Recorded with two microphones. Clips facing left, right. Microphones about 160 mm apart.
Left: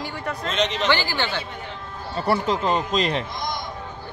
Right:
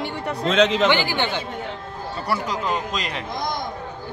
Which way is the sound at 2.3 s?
25° left (ahead or behind).